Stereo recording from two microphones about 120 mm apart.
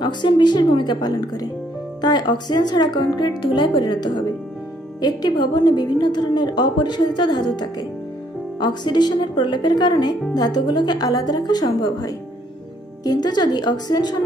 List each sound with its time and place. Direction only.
0.0 s a woman's voice: 40° left (ahead or behind)